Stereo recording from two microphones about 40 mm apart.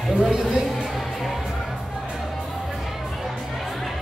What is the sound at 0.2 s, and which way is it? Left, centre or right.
Speech, right.